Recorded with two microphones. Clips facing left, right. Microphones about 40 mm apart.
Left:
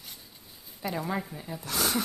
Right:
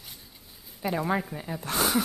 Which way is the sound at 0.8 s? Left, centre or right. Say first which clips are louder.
Right 4 dB; centre.